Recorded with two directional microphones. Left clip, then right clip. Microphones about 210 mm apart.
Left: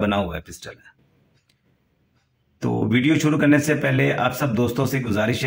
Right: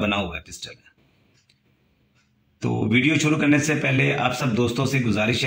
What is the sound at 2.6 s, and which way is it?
A man's voice, 25° left (ahead or behind).